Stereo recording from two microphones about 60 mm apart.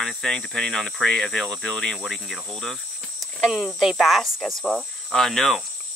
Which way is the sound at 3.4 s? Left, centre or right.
Centre.